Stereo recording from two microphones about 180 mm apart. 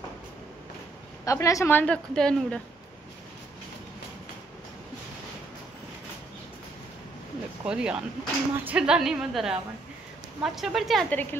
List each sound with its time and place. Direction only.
1.2 s speech: 20° left (ahead or behind)
7.6 s a woman's voice: 5° right (ahead or behind)